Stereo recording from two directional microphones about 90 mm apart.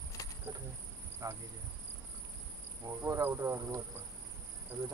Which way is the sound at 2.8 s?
35° right (ahead or behind).